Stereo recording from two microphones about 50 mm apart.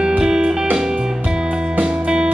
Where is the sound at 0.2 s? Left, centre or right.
Centre.